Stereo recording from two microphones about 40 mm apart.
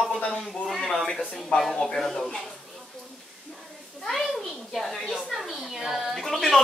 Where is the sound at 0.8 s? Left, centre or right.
Centre.